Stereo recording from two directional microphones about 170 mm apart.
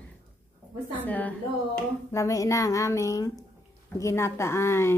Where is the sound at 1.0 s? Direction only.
10° left (ahead or behind).